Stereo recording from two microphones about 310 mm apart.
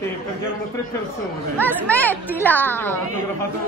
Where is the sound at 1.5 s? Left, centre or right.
Centre.